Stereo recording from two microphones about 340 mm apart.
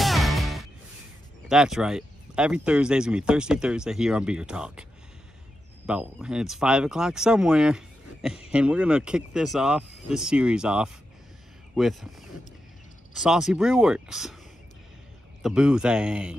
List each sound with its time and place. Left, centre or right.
0.0 s music: centre
1.5 s speech: centre
5.9 s a man's voice: centre
15.4 s speech: centre